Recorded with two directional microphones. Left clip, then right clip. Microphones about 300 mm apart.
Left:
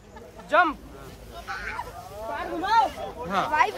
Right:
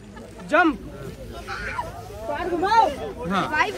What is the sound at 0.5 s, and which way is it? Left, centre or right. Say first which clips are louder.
Speech: right 2 dB; centre.